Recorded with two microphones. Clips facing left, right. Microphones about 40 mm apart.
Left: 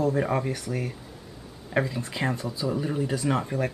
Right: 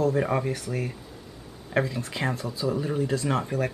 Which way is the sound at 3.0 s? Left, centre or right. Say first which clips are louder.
Even; centre.